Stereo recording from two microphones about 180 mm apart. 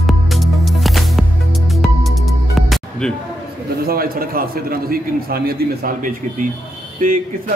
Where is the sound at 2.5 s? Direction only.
Centre (ahead or behind).